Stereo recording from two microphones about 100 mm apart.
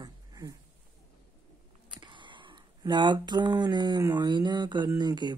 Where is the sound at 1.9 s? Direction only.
50° right (ahead or behind).